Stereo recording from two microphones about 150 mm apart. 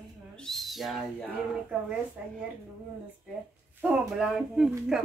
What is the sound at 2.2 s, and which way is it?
Speech, 10° right (ahead or behind).